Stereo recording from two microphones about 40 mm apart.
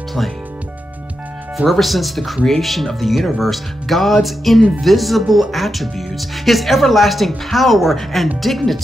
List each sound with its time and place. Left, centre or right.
1.7 s speech: centre